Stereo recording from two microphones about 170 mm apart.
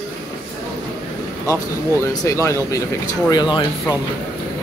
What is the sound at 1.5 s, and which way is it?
Speech, 20° left (ahead or behind).